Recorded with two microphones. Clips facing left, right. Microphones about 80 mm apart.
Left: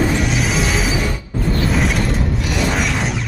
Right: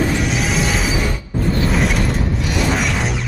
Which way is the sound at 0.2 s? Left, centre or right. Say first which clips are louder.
Even; centre.